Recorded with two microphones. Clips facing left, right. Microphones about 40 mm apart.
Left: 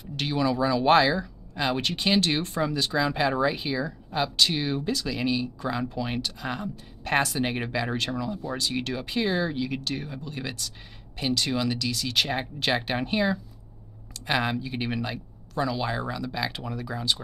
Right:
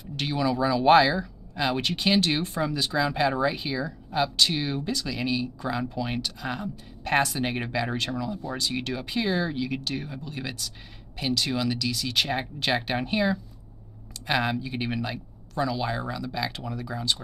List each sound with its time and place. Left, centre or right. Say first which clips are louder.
0.0 s speech: left 1 dB; centre